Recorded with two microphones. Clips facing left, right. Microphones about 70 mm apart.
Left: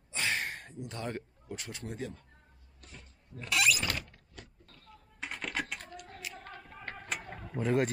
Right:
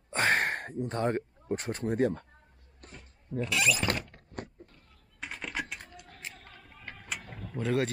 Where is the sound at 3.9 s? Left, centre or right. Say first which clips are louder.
Right 5 dB; right.